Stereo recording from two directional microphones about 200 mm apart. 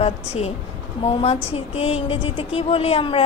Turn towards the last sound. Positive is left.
turn(degrees=25)  # may be behind; listen again after turning